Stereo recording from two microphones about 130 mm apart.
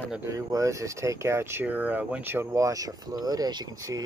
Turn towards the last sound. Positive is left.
turn(degrees=-25)  # may be behind; listen again after turning